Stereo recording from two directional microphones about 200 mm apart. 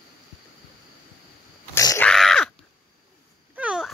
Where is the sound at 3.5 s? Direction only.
5° right (ahead or behind).